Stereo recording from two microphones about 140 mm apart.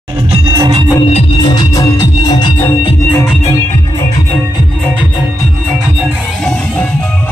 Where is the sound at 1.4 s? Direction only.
30° left (ahead or behind).